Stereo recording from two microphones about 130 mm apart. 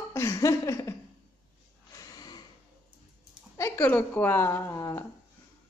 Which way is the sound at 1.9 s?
30° left (ahead or behind).